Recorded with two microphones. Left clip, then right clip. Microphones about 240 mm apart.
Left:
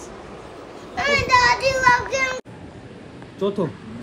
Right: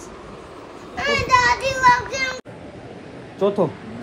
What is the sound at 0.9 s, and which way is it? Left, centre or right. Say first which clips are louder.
Children playing: even; centre.